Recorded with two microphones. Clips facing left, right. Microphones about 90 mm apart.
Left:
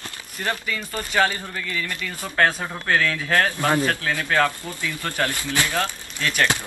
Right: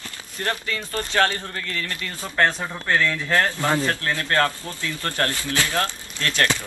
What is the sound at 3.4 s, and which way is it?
Speech, 15° left (ahead or behind).